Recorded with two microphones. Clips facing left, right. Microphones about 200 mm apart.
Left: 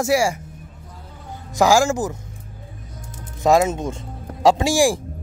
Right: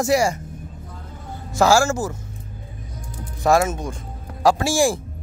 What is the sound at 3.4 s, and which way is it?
Speech, 20° left (ahead or behind).